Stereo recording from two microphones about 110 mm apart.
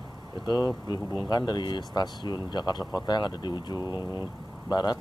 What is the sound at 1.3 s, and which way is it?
Speech, 40° left (ahead or behind).